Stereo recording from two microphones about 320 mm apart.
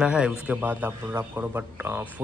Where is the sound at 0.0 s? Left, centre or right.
Centre.